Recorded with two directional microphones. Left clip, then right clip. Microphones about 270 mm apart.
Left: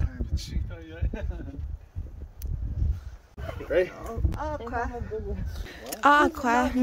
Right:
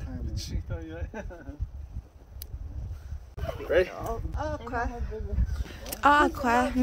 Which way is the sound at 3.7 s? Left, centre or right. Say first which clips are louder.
Even; centre.